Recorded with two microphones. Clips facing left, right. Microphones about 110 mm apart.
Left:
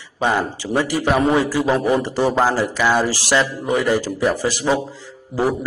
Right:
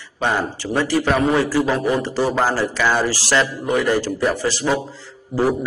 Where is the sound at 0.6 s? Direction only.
15° left (ahead or behind).